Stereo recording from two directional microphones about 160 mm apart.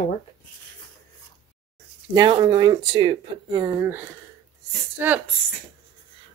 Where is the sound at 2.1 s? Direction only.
25° right (ahead or behind).